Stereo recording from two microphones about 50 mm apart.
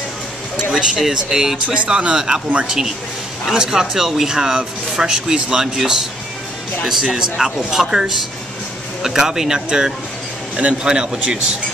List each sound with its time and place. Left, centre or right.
0.7 s a man's voice: centre